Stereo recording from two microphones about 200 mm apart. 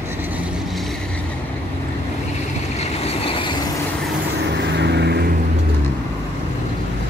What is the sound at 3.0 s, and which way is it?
Vehicle, 30° left (ahead or behind).